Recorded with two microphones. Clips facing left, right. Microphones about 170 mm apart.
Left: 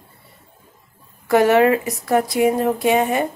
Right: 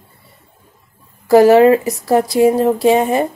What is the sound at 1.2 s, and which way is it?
Speech, 30° right (ahead or behind).